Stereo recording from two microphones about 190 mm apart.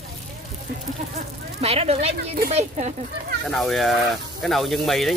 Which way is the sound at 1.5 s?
30° right (ahead or behind).